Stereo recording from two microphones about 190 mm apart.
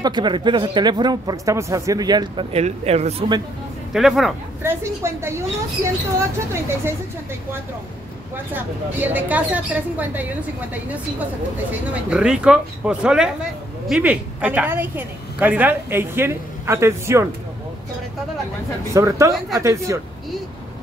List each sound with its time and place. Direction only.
0.0 s speech: 25° right (ahead or behind)
2.5 s speech: 35° right (ahead or behind)
3.9 s speech: centre (ahead or behind)
4.6 s speech: 15° right (ahead or behind)
8.5 s speech: 10° right (ahead or behind)
11.7 s speech: 5° right (ahead or behind)
18.9 s speech: 15° right (ahead or behind)